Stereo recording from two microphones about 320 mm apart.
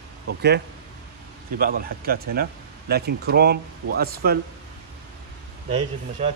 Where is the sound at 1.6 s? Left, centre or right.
Right.